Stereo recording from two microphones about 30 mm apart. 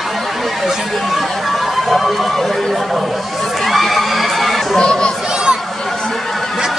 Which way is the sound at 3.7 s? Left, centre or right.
Centre.